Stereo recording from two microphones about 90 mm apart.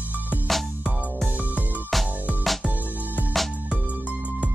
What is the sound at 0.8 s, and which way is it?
Music, 15° right (ahead or behind).